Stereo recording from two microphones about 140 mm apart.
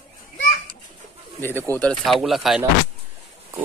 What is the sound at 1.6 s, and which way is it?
Speech, 15° left (ahead or behind).